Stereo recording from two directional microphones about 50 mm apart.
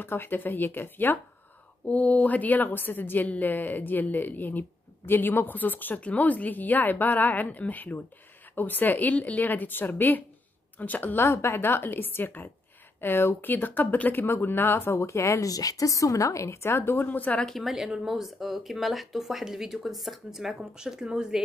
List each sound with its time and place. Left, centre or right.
0.0 s a woman's voice: left
1.9 s a woman's voice: left
11.1 s a woman's voice: left
14.2 s a woman's voice: left
15.0 s speech: left
16.7 s a woman's voice: left
17.3 s speech: centre
17.6 s speech: centre